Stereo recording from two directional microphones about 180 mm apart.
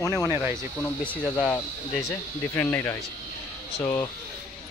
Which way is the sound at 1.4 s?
5° left (ahead or behind).